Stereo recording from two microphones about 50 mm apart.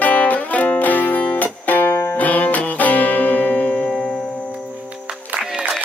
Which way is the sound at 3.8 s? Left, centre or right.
Centre.